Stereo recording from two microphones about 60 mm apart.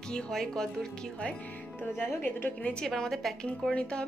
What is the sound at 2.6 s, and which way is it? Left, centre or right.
A woman's voice, centre.